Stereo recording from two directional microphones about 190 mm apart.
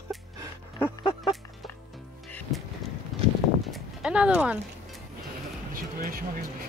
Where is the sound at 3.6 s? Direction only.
Centre (ahead or behind).